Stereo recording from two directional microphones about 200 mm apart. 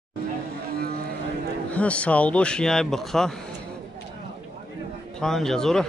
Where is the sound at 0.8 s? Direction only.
50° right (ahead or behind).